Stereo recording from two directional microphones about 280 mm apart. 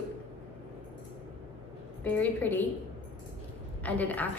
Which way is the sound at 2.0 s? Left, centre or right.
Centre.